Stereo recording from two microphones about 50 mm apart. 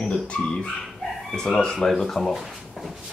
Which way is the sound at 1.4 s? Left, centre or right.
Centre.